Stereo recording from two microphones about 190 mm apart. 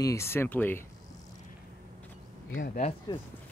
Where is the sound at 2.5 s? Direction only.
45° left (ahead or behind).